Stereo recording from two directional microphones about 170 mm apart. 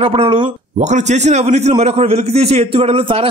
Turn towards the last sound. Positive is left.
turn(degrees=-35)  # may be behind; listen again after turning